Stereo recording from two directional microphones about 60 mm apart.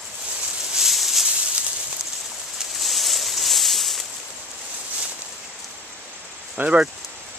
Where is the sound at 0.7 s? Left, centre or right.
Centre.